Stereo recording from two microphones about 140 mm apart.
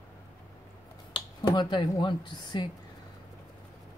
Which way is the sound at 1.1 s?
35° left (ahead or behind).